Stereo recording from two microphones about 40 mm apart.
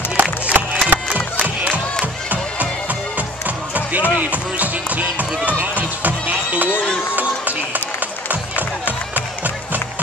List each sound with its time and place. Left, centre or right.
0.2 s music: right
6.7 s run: left
7.2 s run: right
9.1 s music: right